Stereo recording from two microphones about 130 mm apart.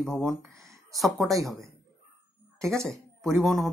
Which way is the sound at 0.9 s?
Centre (ahead or behind).